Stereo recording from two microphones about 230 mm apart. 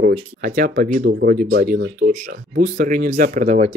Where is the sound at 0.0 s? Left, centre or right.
Right.